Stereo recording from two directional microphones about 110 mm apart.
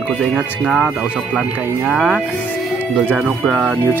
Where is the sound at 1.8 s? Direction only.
10° right (ahead or behind).